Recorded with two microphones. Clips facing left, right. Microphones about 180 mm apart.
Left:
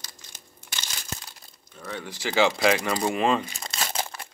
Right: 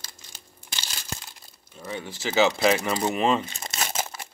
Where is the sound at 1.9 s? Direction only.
20° right (ahead or behind).